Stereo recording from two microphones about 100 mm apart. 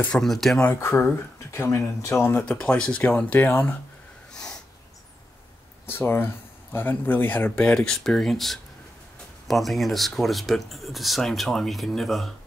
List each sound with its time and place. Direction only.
0.2 s speech: centre (ahead or behind)
0.7 s speech: 25° left (ahead or behind)
2.5 s speech: 10° left (ahead or behind)
4.3 s snort: 5° left (ahead or behind)
5.9 s speech: 20° left (ahead or behind); by 12.3 s centre (ahead or behind)